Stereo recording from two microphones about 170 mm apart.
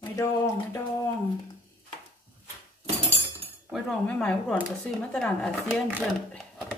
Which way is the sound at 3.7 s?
Centre (ahead or behind).